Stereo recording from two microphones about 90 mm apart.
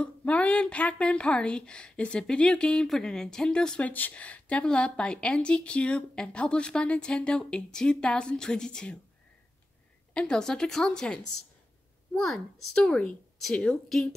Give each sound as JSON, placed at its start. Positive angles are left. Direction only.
{"t": 0.0, "sound": "speech", "side_deg": 15}
{"t": 10.1, "sound": "speech", "side_deg": 10}